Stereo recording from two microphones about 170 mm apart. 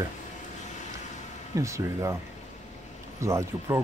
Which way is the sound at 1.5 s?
15° right (ahead or behind).